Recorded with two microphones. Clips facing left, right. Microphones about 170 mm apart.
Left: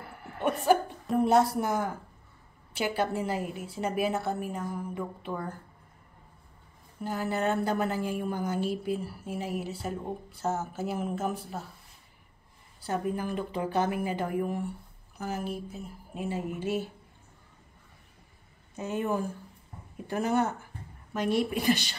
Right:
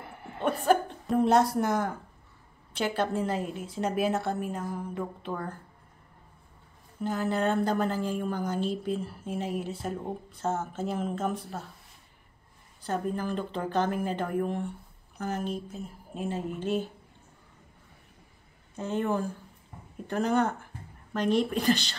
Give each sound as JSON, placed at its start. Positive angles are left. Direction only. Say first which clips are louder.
{"t": 0.0, "sound": "music", "louder": "right 1 dB", "side_deg": -20}
{"t": 0.7, "sound": "a woman's voice", "louder": "even", "side_deg": 5}
{"t": 7.0, "sound": "a woman's voice", "louder": "right 2 dB", "side_deg": 5}
{"t": 12.8, "sound": "a woman's voice", "louder": "even", "side_deg": 10}
{"t": 18.8, "sound": "speech", "louder": "right 1 dB", "side_deg": 15}